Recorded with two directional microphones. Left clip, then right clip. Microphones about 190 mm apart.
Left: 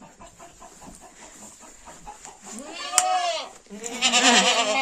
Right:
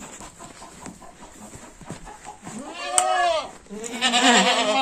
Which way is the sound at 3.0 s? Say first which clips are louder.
Right 1 dB; 65° left (ahead or behind).